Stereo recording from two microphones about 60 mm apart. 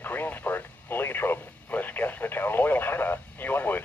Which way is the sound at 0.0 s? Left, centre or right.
Left.